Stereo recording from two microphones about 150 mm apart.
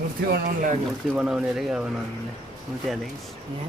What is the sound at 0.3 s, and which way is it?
Speech, 70° right (ahead or behind).